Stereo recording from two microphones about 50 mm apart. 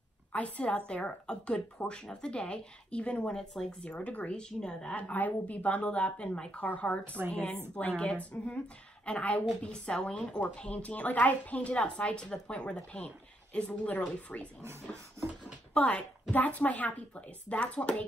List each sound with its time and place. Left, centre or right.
0.3 s speech: left
3.8 s speech: left
5.1 s speech: left
6.6 s a woman's voice: left
15.7 s speech: left